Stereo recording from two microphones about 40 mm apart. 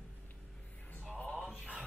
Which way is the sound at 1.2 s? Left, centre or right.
Left.